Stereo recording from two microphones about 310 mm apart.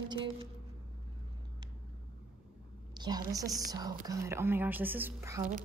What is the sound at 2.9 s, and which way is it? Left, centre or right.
A woman's voice, centre.